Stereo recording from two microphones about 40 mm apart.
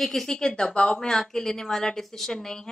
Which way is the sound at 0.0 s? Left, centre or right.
Centre.